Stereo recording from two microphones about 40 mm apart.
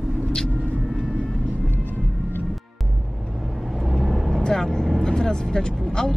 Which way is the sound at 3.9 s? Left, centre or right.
Centre.